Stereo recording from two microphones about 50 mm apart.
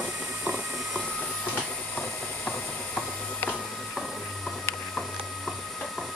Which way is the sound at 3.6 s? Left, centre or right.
Centre.